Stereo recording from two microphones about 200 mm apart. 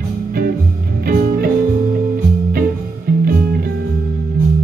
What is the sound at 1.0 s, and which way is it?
Music, 45° right (ahead or behind).